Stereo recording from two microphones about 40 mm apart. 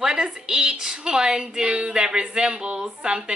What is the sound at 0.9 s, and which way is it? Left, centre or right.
A woman's voice, right.